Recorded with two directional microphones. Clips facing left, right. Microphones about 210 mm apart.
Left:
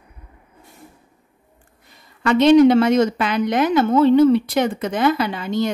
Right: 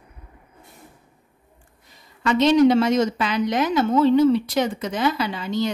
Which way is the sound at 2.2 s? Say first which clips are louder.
Left 4 dB; 60° left (ahead or behind).